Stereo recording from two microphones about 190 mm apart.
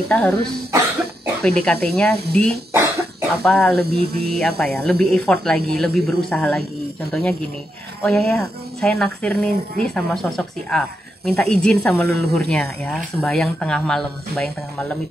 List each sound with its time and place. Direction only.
0.1 s speech: 5° left (ahead or behind)
1.6 s speech: 5° left (ahead or behind)
2.7 s cough: 10° right (ahead or behind)
3.4 s speech: centre (ahead or behind)
3.7 s a sound: 55° right (ahead or behind)
4.3 s speech: centre (ahead or behind)